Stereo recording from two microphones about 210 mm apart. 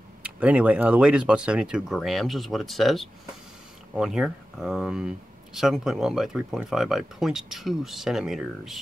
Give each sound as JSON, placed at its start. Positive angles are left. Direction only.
{"t": 0.2, "sound": "speech", "side_deg": -5}